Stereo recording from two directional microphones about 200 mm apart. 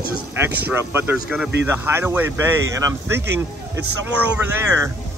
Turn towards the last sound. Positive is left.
turn(degrees=-5)  # may be behind; listen again after turning